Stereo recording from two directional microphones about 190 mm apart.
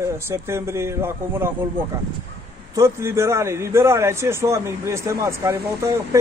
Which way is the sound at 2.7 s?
15° right (ahead or behind).